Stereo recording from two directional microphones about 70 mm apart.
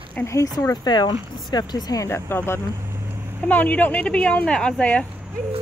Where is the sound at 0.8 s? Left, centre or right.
Left.